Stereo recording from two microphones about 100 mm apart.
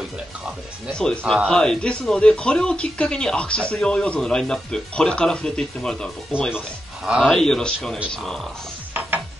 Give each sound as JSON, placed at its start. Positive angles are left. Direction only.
{"t": 0.9, "sound": "speech", "side_deg": 5}
{"t": 7.2, "sound": "a man's voice", "side_deg": 0}